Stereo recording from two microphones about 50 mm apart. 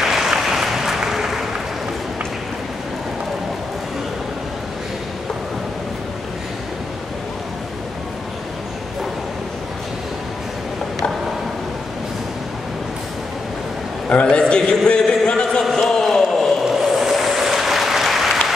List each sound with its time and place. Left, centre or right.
0.0 s applause: centre
14.3 s a sound: centre
15.7 s basketball bounce: centre
16.6 s applause: centre